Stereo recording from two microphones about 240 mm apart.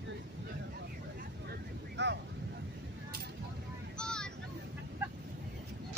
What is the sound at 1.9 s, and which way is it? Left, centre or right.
Vehicle, right.